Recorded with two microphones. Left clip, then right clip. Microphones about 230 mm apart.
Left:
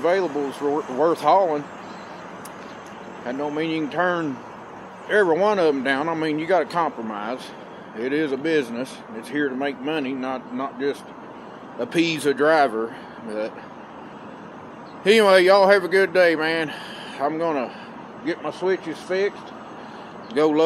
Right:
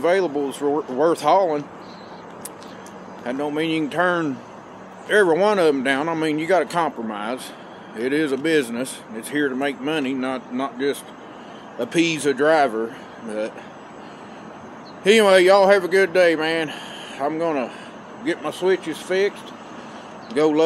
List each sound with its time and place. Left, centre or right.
0.0 s speech: centre
3.3 s speech: centre
15.0 s speech: centre
20.3 s speech: centre